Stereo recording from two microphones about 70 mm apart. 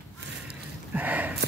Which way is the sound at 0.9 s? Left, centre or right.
Right.